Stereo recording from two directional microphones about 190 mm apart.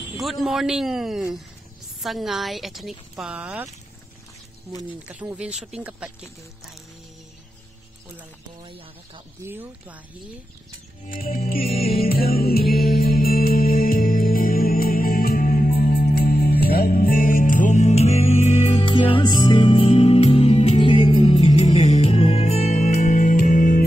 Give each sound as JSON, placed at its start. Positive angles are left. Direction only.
{"t": 0.2, "sound": "a woman's voice", "side_deg": 0}
{"t": 5.0, "sound": "speech", "side_deg": -10}
{"t": 8.5, "sound": "speech", "side_deg": -25}
{"t": 9.4, "sound": "speech", "side_deg": -10}
{"t": 11.1, "sound": "music", "side_deg": 45}